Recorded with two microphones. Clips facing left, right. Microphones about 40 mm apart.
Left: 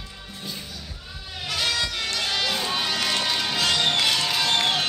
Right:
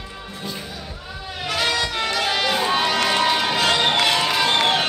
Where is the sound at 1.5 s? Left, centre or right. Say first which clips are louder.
Right 4 dB; centre.